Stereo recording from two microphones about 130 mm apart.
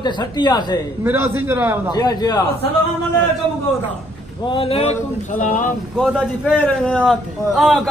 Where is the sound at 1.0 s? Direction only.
15° right (ahead or behind).